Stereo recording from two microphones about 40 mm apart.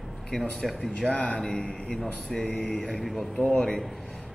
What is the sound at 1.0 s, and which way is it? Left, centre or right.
A man's voice, left.